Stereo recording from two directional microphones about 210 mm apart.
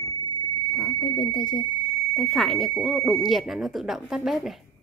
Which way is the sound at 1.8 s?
10° left (ahead or behind).